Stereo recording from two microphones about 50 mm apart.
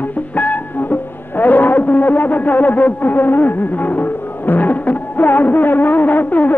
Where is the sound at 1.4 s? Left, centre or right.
Left.